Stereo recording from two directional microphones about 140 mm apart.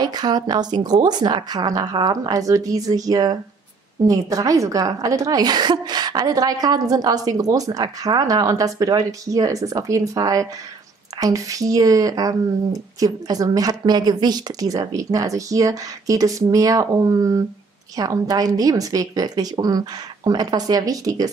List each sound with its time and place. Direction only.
0.0 s a woman's voice: 30° right (ahead or behind)